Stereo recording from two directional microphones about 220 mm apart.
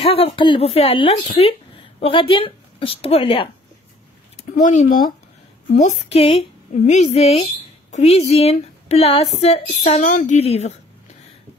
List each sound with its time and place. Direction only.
0.0 s speech: 25° left (ahead or behind)
4.6 s a woman's voice: 35° left (ahead or behind)